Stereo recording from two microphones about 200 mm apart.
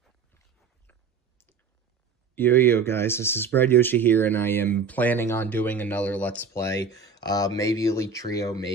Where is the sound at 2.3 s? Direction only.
10° left (ahead or behind).